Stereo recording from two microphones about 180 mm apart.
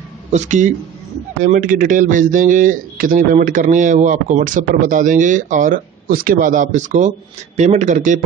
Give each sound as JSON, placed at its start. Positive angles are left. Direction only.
{"t": 0.3, "sound": "speech", "side_deg": -45}